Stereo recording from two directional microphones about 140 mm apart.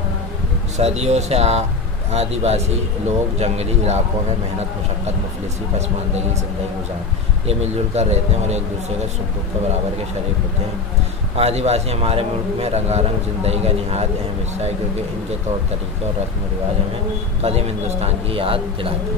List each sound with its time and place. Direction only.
0.7 s a man's voice: 50° right (ahead or behind)
7.4 s a man's voice: 50° right (ahead or behind)
11.3 s a man's voice: 50° right (ahead or behind)
17.4 s a man's voice: 50° right (ahead or behind)